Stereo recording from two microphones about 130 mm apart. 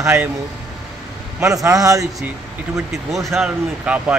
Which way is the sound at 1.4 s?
25° right (ahead or behind).